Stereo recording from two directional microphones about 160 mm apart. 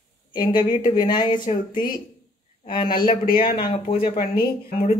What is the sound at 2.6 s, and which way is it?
Speech, 30° left (ahead or behind).